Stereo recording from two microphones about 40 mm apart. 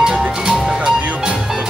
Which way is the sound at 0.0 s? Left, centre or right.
Right.